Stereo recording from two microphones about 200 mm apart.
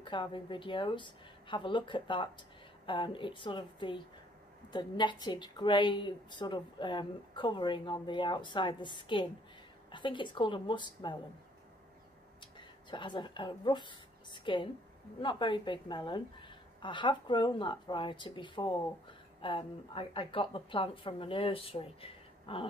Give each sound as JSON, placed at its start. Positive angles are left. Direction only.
{"t": 0.0, "sound": "a woman's voice", "side_deg": 25}
{"t": 12.4, "sound": "a sound", "side_deg": 25}
{"t": 15.1, "sound": "a woman's voice", "side_deg": 25}